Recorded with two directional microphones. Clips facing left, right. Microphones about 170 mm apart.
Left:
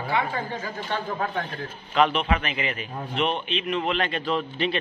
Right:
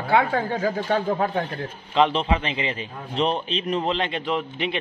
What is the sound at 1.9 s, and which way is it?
A man's voice, 25° right (ahead or behind).